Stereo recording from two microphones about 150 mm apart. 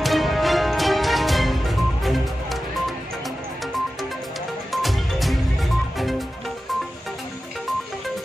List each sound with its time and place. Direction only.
0.0 s music: centre (ahead or behind)
4.8 s music: centre (ahead or behind)